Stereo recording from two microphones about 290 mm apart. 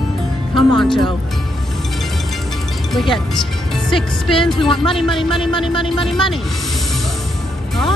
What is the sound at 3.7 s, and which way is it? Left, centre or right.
Speech, centre.